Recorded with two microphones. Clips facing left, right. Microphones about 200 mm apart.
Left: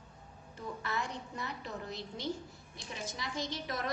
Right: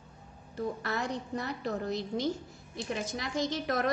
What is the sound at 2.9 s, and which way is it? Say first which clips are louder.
Speech: right 6 dB; 65° right (ahead or behind).